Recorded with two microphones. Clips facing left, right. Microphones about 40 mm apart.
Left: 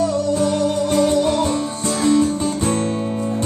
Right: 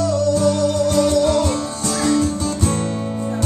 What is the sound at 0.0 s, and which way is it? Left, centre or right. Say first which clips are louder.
Music: right 1 dB; left.